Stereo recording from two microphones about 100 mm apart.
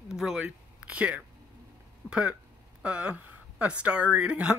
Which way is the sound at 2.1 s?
10° right (ahead or behind).